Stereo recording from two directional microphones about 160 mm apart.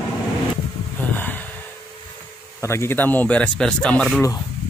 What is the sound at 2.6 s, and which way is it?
Speech, 15° left (ahead or behind).